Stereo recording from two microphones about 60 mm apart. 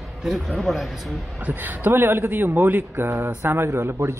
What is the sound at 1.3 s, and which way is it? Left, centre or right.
A man's voice, right.